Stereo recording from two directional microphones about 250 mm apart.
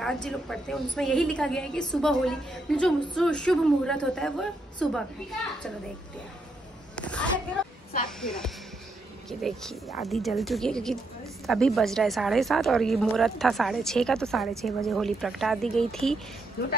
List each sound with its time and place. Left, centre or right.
0.0 s a woman's voice: centre
7.0 s a sound: centre
8.2 s a woman's voice: centre
16.6 s speech: left